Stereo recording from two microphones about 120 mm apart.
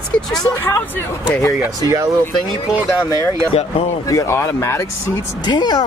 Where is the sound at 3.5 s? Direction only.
55° left (ahead or behind).